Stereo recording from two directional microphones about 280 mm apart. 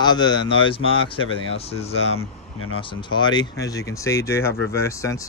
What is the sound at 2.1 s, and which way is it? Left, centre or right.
Speech, left.